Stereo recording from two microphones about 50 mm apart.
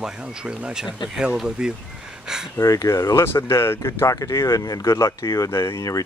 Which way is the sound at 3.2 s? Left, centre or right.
Left.